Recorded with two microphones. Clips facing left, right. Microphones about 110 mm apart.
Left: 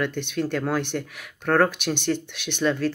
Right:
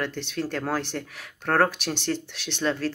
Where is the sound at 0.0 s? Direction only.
35° right (ahead or behind).